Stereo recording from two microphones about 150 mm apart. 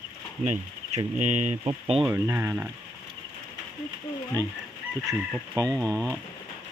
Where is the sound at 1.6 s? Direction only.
35° right (ahead or behind).